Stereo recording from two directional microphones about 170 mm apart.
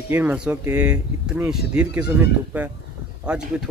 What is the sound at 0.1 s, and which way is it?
Speech, 10° right (ahead or behind).